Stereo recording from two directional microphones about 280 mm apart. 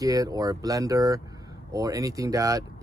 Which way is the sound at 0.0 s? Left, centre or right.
Centre.